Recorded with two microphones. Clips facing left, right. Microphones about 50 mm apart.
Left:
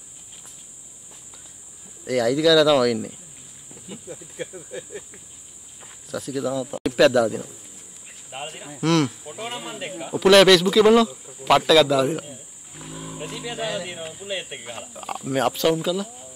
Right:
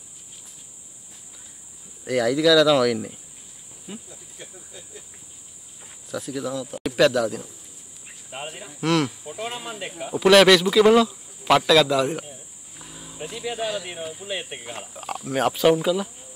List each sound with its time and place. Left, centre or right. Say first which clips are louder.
2.0 s speech: even; centre
4.1 s speech: left 10 dB; left
6.0 s speech: left 3 dB; centre